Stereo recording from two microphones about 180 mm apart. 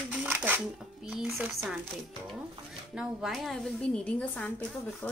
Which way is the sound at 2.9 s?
Centre (ahead or behind).